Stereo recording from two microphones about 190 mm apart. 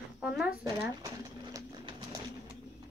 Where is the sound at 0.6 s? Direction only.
20° right (ahead or behind).